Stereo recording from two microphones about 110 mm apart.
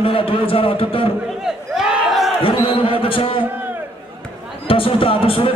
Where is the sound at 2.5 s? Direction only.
55° left (ahead or behind).